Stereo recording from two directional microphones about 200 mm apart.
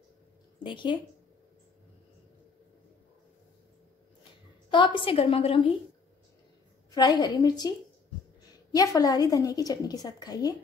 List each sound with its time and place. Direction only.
0.7 s a woman's voice: 25° left (ahead or behind)
4.6 s a woman's voice: 25° left (ahead or behind)
6.9 s a woman's voice: 20° left (ahead or behind)
8.7 s a woman's voice: 15° left (ahead or behind)